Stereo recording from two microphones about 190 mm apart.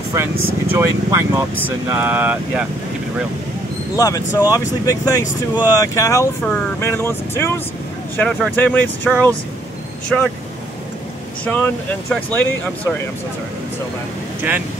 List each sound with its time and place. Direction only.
0.1 s speech: 15° right (ahead or behind)
3.9 s speech: 15° left (ahead or behind)
11.4 s speech: 10° left (ahead or behind)